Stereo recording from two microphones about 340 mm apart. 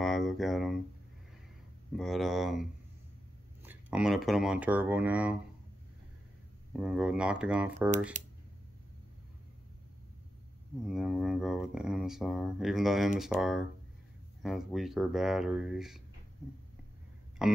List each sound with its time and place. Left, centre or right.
0.0 s a sound: centre
2.0 s speech: centre
3.6 s speech: centre
6.7 s speech: centre
8.2 s speech: right
10.9 s speech: centre
17.4 s speech: centre